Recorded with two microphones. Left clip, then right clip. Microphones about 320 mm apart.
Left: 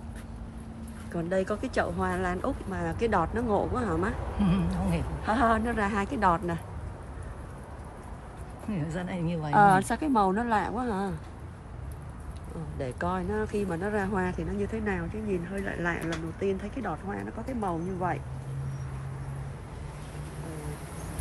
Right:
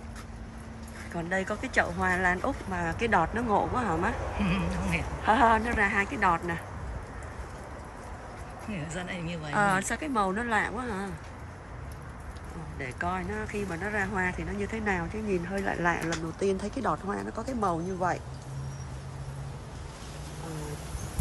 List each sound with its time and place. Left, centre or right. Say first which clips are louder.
1.1 s speech: left 2 dB; centre
4.4 s a woman's voice: even; centre
5.2 s a woman's voice: right 3 dB; centre
8.7 s a woman's voice: left 1 dB; centre
9.5 s speech: left 5 dB; centre
12.7 s speech: left 1 dB; centre